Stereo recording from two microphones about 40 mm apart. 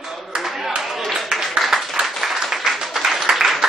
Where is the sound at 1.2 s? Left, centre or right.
Centre.